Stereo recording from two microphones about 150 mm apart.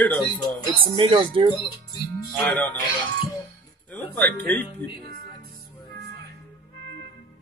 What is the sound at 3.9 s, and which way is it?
Speech, 10° left (ahead or behind).